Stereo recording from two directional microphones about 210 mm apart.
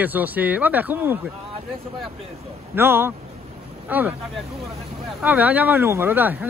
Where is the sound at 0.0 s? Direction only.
10° right (ahead or behind).